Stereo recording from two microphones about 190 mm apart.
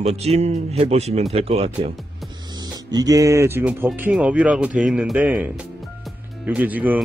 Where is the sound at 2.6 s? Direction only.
20° right (ahead or behind).